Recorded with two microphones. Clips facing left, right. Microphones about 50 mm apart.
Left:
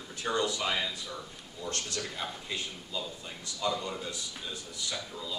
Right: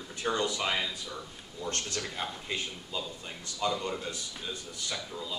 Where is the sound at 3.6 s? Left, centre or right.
Right.